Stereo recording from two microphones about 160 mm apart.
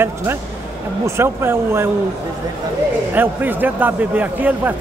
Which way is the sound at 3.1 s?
10° right (ahead or behind).